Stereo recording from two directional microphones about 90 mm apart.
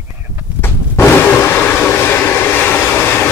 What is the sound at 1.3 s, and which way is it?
Train, 25° left (ahead or behind).